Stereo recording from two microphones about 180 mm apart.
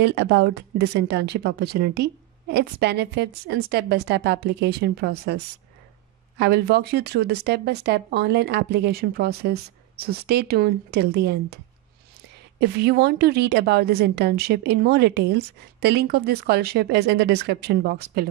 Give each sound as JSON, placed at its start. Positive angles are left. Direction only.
{"t": 0.0, "sound": "a woman's voice", "side_deg": -65}